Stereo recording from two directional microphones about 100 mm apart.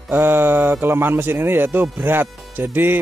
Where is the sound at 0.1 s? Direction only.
20° right (ahead or behind).